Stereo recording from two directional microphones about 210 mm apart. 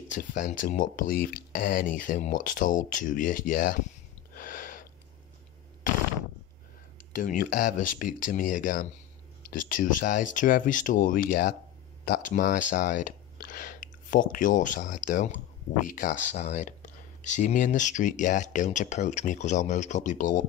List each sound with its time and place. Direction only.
0.1 s speech: 35° left (ahead or behind)
4.4 s a sound: 40° left (ahead or behind)
7.1 s speech: 40° left (ahead or behind)